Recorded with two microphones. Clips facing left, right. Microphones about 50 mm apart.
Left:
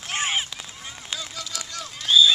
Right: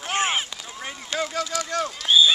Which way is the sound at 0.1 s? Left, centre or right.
Centre.